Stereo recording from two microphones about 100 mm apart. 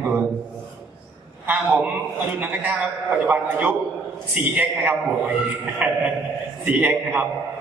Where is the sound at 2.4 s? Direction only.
20° right (ahead or behind).